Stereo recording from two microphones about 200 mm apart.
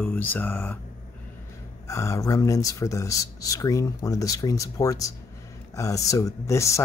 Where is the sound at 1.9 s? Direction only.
15° left (ahead or behind).